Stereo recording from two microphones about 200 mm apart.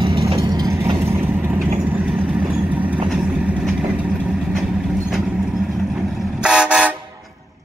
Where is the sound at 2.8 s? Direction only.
5° right (ahead or behind).